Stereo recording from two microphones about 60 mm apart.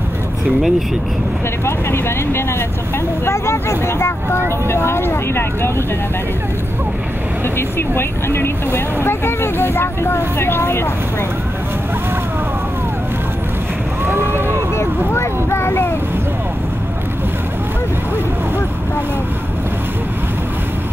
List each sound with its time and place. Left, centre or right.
0.6 s speech: centre
1.9 s speech: left
7.5 s speech: left
14.0 s boat: right
14.8 s vehicle: left